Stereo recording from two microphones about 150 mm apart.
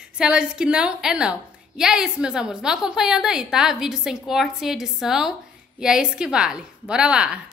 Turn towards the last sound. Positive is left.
turn(degrees=-5)  # may be behind; listen again after turning